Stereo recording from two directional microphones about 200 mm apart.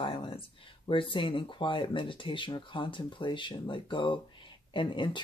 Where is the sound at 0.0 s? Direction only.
25° left (ahead or behind).